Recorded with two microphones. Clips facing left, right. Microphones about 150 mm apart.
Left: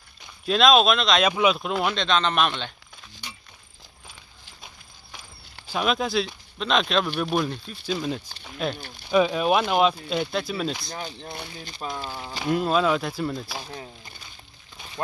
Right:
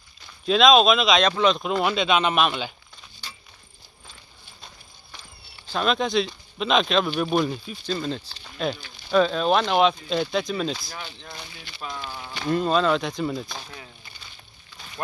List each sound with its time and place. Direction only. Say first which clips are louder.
0.5 s speech: right 2 dB; centre (ahead or behind)
1.2 s speech: right 1 dB; 10° left (ahead or behind)
3.2 s a sound: left 1 dB; 15° left (ahead or behind)
5.7 s speech: right 1 dB; 5° left (ahead or behind)
7.8 s speech: left 1 dB; 10° left (ahead or behind)
11.0 s speech: left 4 dB; 40° left (ahead or behind)
12.4 s speech: right 1 dB; 5° left (ahead or behind)